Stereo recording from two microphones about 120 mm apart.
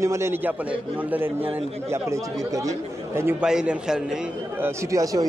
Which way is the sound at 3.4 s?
5° right (ahead or behind).